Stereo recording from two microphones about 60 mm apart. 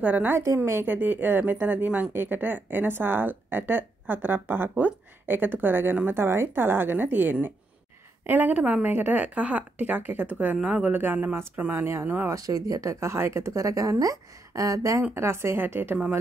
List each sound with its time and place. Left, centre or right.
0.0 s speech: right
10.9 s speech: right
11.7 s speech: right
12.3 s a woman's voice: right
13.0 s a woman's voice: right
15.1 s speech: right